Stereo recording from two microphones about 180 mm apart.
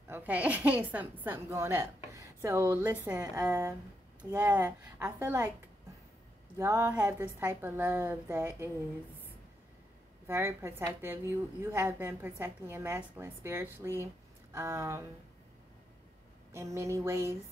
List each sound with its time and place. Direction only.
0.1 s a woman's voice: 10° right (ahead or behind)
6.6 s a woman's voice: 20° right (ahead or behind)
10.2 s a woman's voice: 15° right (ahead or behind)
16.5 s a woman's voice: 15° right (ahead or behind)